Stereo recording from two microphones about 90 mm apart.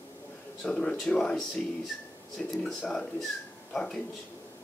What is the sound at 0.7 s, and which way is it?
Speech, 10° left (ahead or behind).